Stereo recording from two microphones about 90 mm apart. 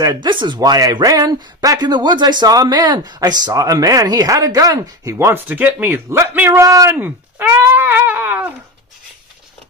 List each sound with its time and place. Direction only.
0.0 s speech: 55° right (ahead or behind)
5.2 s speech: 25° right (ahead or behind)
6.6 s speech: 40° right (ahead or behind)
6.9 s a sound: 20° right (ahead or behind)